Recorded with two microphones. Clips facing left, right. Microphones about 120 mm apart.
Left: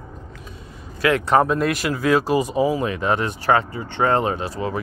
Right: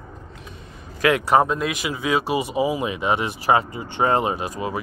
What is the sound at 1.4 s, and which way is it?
Speech, centre (ahead or behind).